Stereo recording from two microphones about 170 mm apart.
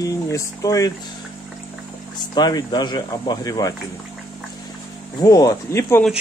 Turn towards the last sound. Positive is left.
turn(degrees=20)  # may be behind; listen again after turning